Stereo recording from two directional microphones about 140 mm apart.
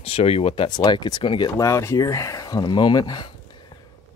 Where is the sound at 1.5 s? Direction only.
20° left (ahead or behind).